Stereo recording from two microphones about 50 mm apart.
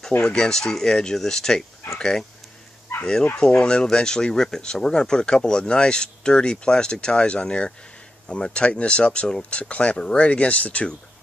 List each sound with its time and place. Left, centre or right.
0.2 s speech: centre
3.3 s speech: centre